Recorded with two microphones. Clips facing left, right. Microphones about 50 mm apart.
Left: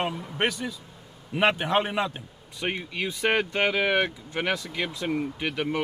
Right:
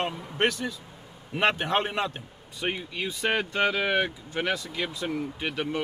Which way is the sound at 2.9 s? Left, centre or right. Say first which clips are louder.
Left 4 dB; left.